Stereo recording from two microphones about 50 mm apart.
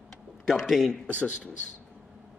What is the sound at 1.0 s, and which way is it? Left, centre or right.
Speech, left.